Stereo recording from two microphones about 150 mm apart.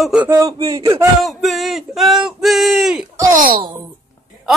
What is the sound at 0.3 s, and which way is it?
Speech, 20° right (ahead or behind).